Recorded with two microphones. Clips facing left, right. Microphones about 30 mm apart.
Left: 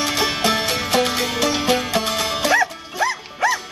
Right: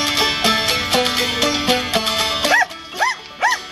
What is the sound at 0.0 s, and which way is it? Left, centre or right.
Music, right.